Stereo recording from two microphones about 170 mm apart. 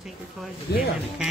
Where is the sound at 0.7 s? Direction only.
70° left (ahead or behind).